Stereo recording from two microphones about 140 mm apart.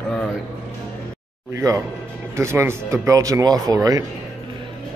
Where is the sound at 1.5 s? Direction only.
20° right (ahead or behind).